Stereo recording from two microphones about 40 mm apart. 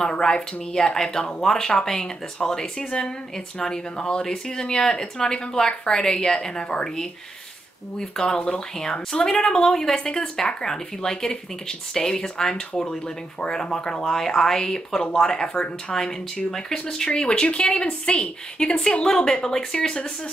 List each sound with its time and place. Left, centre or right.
0.1 s speech: centre
14.0 s speech: centre